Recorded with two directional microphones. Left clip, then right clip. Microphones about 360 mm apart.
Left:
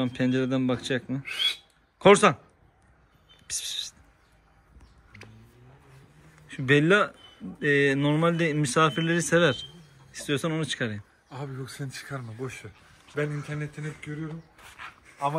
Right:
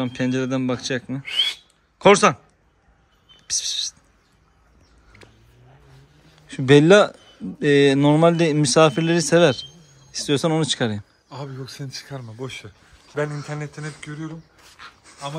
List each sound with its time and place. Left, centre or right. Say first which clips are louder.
0.0 s speech: right 3 dB; centre
1.2 s speech: right 7 dB; right
2.0 s speech: right 4 dB; centre
3.4 s speech: right 8 dB; centre
6.4 s speech: right 8 dB; centre